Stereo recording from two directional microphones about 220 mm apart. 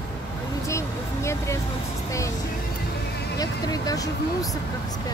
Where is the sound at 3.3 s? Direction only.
15° left (ahead or behind).